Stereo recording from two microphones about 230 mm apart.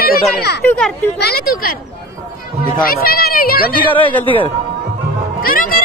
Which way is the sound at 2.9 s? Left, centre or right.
Left.